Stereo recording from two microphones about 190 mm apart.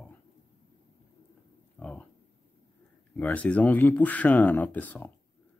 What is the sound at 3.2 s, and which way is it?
Speech, 10° left (ahead or behind).